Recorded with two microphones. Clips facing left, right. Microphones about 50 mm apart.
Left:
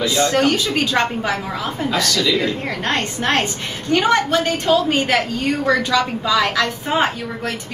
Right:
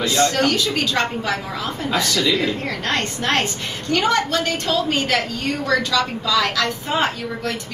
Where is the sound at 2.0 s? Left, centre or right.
Right.